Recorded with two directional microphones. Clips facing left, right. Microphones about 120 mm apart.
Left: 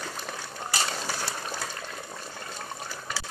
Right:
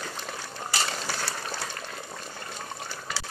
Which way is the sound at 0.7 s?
10° left (ahead or behind).